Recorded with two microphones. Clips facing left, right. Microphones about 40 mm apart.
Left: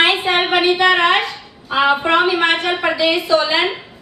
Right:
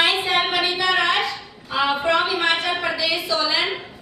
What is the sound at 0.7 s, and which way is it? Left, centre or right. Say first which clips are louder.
A woman's voice: left 6 dB; left.